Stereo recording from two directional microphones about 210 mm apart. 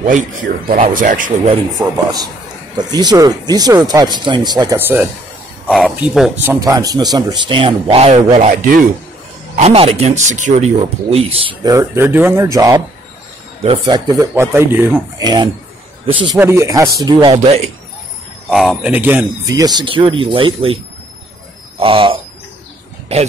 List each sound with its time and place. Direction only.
0.0 s speech: 35° right (ahead or behind)
1.8 s speech: 10° right (ahead or behind)
2.8 s speech: 20° right (ahead or behind)
8.4 s speech: 40° right (ahead or behind); by 16.9 s 15° right (ahead or behind)
17.0 s speech: 25° right (ahead or behind)
18.5 s speech: centre (ahead or behind); by 23.3 s 30° right (ahead or behind)